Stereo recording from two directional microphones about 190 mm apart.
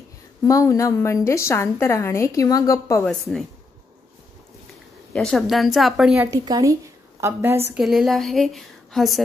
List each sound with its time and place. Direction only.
0.4 s a woman's voice: 15° left (ahead or behind)
3.1 s a woman's voice: centre (ahead or behind)
5.1 s a woman's voice: 5° left (ahead or behind)
6.3 s a woman's voice: 20° right (ahead or behind)
7.7 s a woman's voice: centre (ahead or behind)